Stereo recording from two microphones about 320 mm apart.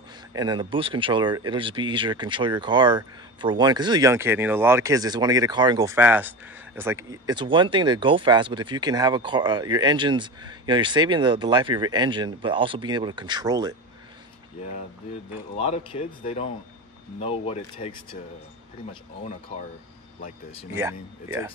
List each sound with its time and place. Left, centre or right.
0.3 s speech: centre
15.5 s speech: centre
20.7 s speech: centre